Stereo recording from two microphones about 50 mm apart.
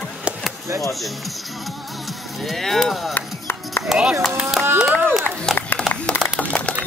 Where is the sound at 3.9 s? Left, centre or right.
Centre.